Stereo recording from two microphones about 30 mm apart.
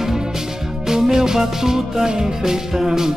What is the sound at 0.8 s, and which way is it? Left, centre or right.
Music, centre.